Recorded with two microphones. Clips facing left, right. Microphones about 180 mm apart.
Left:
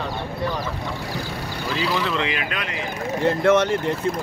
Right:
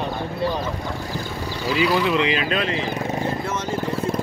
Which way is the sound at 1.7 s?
15° right (ahead or behind).